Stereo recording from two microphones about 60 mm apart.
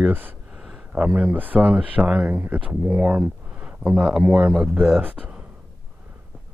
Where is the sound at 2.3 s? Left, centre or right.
Right.